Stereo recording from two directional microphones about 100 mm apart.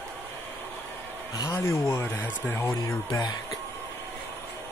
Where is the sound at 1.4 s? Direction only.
30° left (ahead or behind).